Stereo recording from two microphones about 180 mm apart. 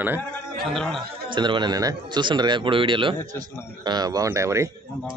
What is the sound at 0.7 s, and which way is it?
Speech, 5° left (ahead or behind).